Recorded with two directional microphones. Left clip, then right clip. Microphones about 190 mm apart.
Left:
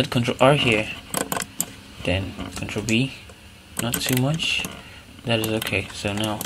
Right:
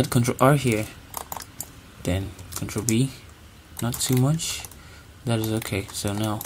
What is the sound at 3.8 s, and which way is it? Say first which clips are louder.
Speech: left 2 dB; 45° right (ahead or behind).